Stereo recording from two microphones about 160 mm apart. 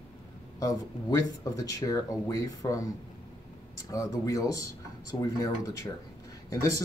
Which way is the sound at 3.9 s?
20° left (ahead or behind).